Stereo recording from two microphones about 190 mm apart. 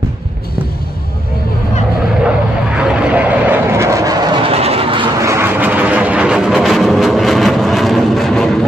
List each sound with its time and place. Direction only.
2.2 s vehicle: 5° right (ahead or behind); by 5.3 s 25° right (ahead or behind)
5.3 s vehicle: 10° right (ahead or behind)